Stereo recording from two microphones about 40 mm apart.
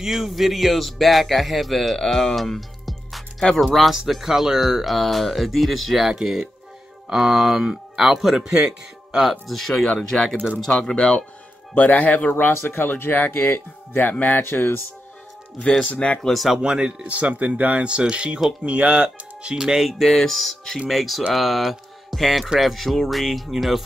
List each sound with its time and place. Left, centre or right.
0.0 s speech: centre
9.5 s speech: centre
10.9 s speech: centre
11.7 s speech: left
12.5 s speech: left
14.4 s speech: left
15.8 s speech: left
16.2 s speech: centre
16.4 s speech: centre
17.1 s speech: right
19.4 s speech: centre
19.9 s speech: centre
21.3 s mantra: centre
22.6 s speech: centre